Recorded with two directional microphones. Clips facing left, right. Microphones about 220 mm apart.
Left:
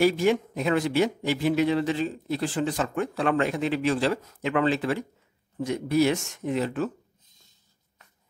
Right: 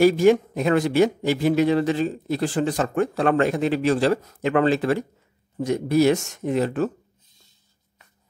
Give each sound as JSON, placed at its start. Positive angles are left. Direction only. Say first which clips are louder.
{"t": 0.0, "sound": "speech", "louder": "right 6 dB", "side_deg": -45}